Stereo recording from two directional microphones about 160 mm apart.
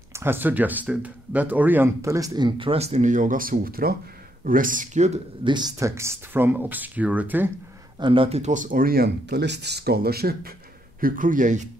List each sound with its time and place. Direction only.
0.1 s speech: 15° right (ahead or behind); by 5.2 s 45° right (ahead or behind)
5.4 s speech: 30° right (ahead or behind); by 7.5 s 10° right (ahead or behind)
8.0 s speech: 35° right (ahead or behind); by 10.5 s 75° right (ahead or behind)
11.0 s speech: 60° right (ahead or behind)